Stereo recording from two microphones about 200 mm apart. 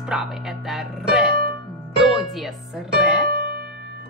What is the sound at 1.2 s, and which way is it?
Music, 50° right (ahead or behind).